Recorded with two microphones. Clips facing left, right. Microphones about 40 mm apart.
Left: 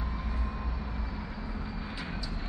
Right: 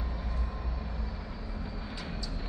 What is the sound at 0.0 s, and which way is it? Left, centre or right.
Vehicle, centre.